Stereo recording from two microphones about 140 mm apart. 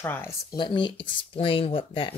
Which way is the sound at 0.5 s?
35° left (ahead or behind).